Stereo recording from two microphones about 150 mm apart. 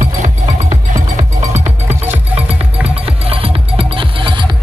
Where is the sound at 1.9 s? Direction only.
15° right (ahead or behind).